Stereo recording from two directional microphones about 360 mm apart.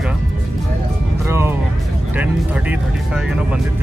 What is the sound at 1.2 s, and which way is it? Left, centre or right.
Speech, centre.